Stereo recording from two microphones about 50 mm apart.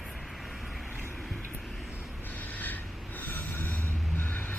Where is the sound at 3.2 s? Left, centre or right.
Left.